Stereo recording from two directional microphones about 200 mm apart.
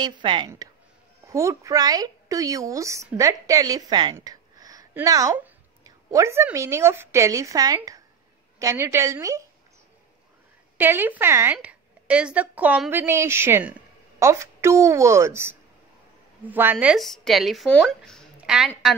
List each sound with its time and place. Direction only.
0.0 s a woman's voice: 25° right (ahead or behind)
10.8 s a woman's voice: 10° right (ahead or behind)